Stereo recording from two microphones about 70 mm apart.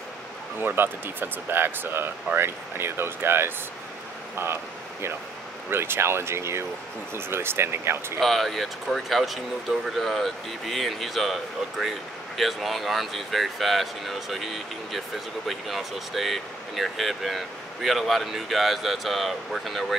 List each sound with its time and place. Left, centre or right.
0.6 s speech: right
5.7 s speech: right
8.2 s speech: centre